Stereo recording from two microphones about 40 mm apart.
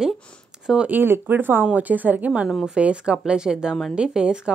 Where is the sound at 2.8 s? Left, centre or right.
Right.